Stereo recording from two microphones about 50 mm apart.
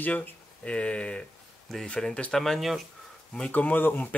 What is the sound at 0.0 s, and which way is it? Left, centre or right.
Speech, left.